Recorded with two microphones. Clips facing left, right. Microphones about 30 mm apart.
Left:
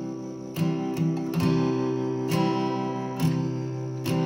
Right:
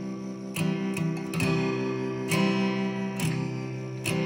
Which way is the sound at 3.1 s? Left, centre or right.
Right.